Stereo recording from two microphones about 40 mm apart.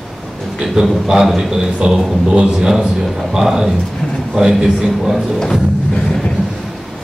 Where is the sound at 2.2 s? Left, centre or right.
Right.